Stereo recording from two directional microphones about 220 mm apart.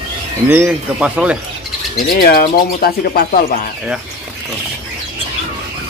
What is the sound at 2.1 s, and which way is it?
Speech, 40° left (ahead or behind).